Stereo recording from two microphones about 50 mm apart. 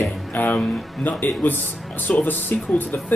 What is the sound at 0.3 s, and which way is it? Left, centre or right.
Speech, left.